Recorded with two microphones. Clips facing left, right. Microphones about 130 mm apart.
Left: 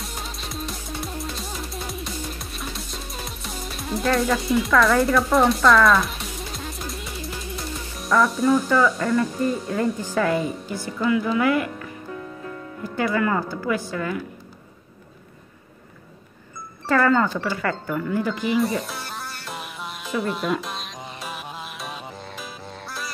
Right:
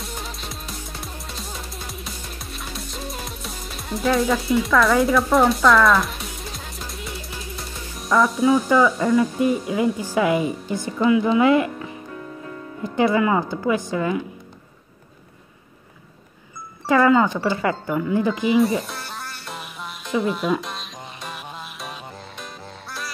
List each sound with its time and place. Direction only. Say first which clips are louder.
0.0 s music: right 1 dB; centre (ahead or behind)
8.0 s speech: right 2 dB; centre (ahead or behind); by 14.2 s 20° right (ahead or behind)
16.8 s speech: right 3 dB; 15° right (ahead or behind)
18.6 s music: right 4 dB; centre (ahead or behind)